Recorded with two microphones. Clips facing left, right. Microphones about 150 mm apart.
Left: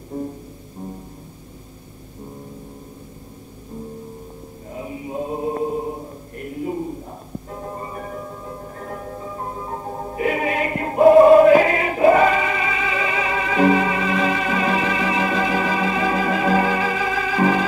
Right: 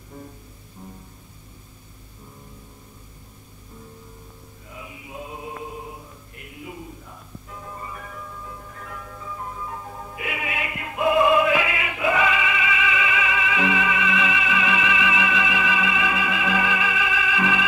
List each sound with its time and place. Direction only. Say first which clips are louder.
0.1 s music: left 13 dB; 30° left (ahead or behind)
4.7 s chant: left 10 dB; 40° left (ahead or behind)